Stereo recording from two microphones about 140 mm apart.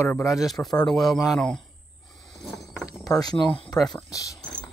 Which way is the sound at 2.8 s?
25° left (ahead or behind).